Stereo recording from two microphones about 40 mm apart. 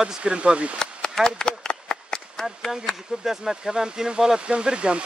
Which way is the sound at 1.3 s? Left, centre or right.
Left.